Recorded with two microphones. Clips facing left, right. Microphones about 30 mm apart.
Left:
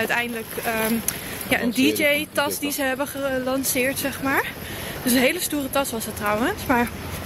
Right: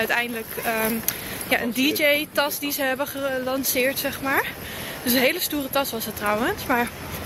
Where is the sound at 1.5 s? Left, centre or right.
Centre.